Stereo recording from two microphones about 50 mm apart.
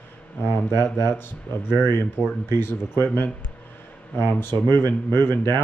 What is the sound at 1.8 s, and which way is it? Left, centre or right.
Speech, left.